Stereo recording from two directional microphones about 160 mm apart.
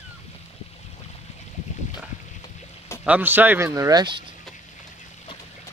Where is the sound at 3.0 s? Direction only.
10° right (ahead or behind); by 4.3 s 30° right (ahead or behind).